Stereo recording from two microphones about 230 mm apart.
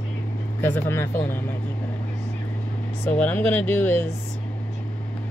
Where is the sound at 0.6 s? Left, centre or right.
Centre.